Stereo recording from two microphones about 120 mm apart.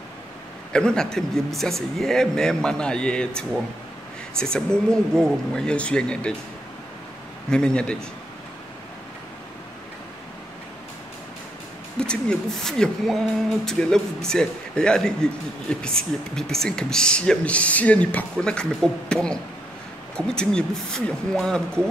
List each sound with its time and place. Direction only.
0.7 s speech: 5° left (ahead or behind)
7.5 s speech: 10° left (ahead or behind)
12.0 s speech: 5° left (ahead or behind)